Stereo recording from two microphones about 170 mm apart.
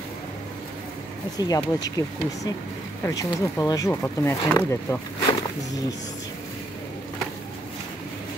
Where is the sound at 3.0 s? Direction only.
20° left (ahead or behind).